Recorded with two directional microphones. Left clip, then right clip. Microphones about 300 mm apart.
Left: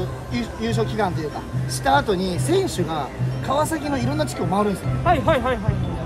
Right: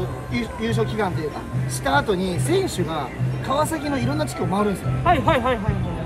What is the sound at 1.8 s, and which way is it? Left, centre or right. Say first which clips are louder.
Speech: left 2 dB; centre.